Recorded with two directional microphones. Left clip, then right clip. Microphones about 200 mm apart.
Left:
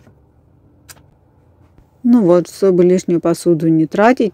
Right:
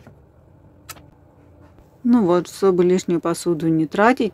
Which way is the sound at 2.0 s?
20° left (ahead or behind).